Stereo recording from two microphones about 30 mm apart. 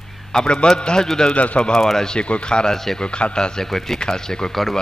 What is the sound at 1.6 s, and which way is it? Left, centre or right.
Speech, left.